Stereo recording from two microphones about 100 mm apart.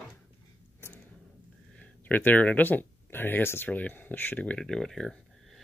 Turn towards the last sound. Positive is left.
turn(degrees=5)  # may be behind; listen again after turning